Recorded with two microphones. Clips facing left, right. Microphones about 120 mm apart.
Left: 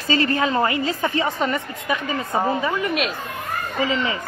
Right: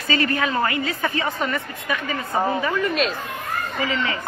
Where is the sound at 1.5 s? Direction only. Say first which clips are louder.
Left 2 dB; 15° left (ahead or behind).